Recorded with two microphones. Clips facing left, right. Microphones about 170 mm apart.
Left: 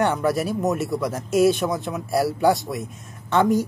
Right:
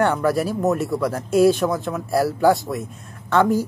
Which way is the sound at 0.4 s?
Centre (ahead or behind).